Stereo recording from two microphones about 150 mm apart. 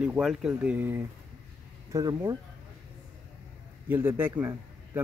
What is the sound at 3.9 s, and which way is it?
A man's voice, 15° right (ahead or behind).